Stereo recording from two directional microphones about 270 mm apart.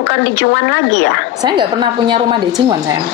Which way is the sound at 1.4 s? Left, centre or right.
Centre.